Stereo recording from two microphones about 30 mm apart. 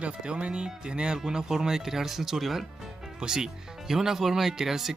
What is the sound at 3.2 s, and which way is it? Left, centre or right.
Speech, right.